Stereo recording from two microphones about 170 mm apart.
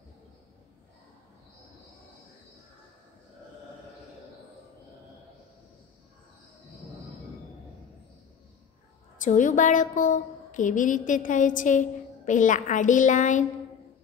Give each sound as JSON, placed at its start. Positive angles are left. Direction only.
{"t": 9.2, "sound": "a woman's voice", "side_deg": 50}